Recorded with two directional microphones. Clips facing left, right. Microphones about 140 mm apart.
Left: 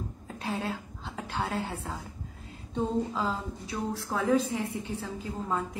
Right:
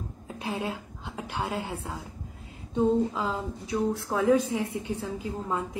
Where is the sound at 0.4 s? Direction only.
15° right (ahead or behind).